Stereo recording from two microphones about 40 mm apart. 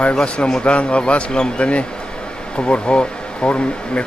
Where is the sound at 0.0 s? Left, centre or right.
Left.